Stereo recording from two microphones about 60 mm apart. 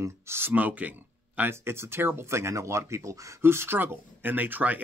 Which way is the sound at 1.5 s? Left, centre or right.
Right.